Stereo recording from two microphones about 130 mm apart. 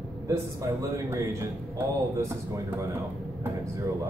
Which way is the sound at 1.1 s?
20° right (ahead or behind).